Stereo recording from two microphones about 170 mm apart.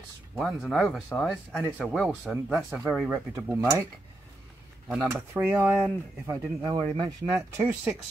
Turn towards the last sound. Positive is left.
turn(degrees=-10)  # may be behind; listen again after turning